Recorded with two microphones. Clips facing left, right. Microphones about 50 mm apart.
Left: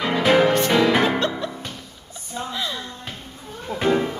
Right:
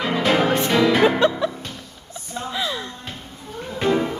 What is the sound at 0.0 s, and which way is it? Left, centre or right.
Music, centre.